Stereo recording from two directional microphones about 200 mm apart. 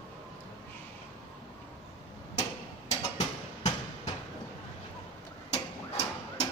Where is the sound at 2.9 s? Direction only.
35° left (ahead or behind).